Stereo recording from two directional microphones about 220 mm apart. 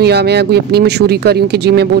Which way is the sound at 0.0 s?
50° right (ahead or behind).